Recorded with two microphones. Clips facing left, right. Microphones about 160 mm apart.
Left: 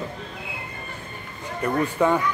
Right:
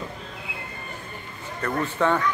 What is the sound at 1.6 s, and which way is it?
Speech, 10° left (ahead or behind).